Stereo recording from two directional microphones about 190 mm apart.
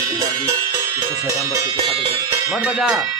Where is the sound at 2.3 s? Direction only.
5° right (ahead or behind).